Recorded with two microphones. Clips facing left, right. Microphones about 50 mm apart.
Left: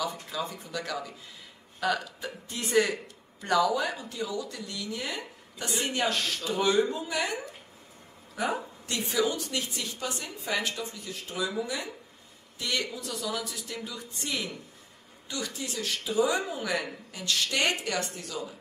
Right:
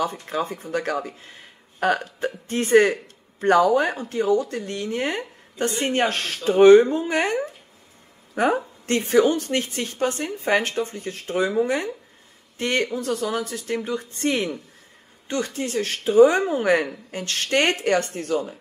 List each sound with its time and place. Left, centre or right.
0.0 s speech: right